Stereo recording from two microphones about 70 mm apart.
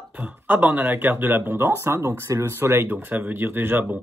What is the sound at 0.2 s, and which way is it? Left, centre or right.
Speech, right.